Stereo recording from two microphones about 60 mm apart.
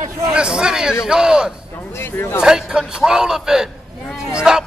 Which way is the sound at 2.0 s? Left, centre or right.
Left.